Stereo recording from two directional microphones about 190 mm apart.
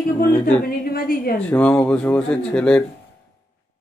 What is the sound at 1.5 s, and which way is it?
Speech, 10° left (ahead or behind).